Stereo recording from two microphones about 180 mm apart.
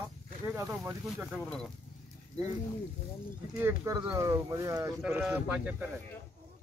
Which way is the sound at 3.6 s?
15° right (ahead or behind).